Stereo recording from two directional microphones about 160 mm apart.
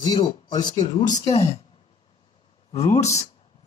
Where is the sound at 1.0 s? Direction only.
45° left (ahead or behind).